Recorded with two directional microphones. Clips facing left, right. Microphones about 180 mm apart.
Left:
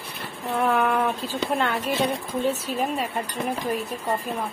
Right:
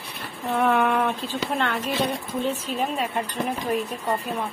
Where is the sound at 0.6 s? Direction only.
Centre (ahead or behind).